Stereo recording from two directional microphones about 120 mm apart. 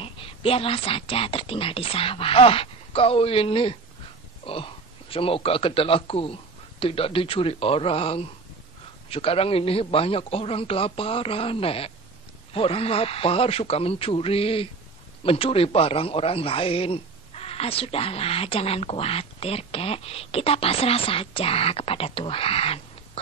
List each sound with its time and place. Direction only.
0.0 s a man's voice: 50° left (ahead or behind)